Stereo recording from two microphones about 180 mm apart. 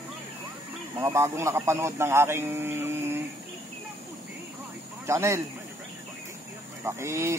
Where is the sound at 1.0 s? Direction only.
15° right (ahead or behind).